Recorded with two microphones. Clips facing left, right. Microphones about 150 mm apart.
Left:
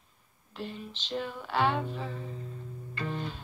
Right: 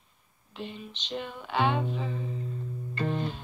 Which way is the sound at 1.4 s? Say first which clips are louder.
Right 2 dB; 15° right (ahead or behind).